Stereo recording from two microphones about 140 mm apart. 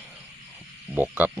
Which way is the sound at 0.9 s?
15° right (ahead or behind).